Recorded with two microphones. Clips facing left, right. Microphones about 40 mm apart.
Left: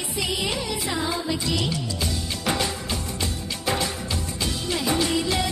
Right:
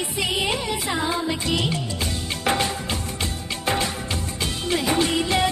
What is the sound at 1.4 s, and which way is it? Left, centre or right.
Music, right.